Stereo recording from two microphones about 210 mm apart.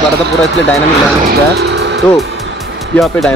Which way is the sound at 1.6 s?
50° right (ahead or behind).